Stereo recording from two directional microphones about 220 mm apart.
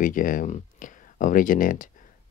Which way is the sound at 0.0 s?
40° left (ahead or behind).